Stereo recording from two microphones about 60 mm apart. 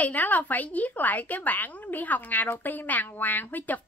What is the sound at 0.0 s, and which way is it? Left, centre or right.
Speech, left.